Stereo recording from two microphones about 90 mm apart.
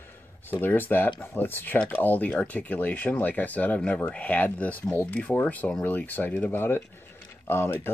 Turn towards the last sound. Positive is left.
turn(degrees=25)  # may be behind; listen again after turning